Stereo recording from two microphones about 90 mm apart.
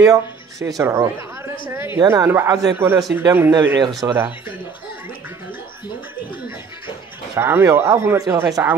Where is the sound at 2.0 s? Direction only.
40° right (ahead or behind).